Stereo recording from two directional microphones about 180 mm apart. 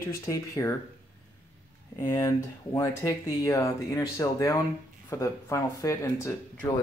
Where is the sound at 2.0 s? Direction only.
15° left (ahead or behind).